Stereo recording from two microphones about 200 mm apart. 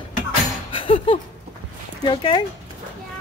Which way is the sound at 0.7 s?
25° left (ahead or behind).